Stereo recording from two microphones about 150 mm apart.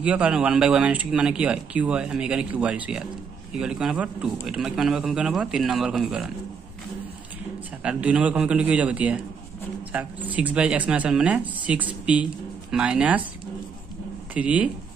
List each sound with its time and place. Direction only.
0.0 s a man's voice: 10° right (ahead or behind)
7.8 s speech: 5° right (ahead or behind)
14.3 s speech: 10° right (ahead or behind)